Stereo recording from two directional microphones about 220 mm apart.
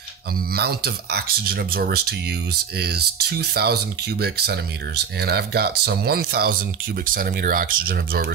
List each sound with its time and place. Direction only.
0.6 s speech: 45° right (ahead or behind)